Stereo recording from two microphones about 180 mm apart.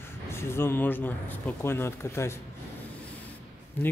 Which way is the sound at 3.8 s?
10° left (ahead or behind).